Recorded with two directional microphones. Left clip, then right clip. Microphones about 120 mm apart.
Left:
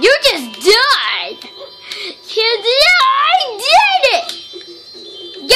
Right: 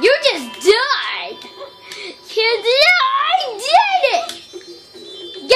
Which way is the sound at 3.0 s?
40° left (ahead or behind).